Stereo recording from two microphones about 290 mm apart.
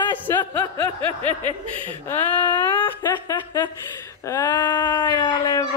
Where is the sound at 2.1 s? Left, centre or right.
Centre.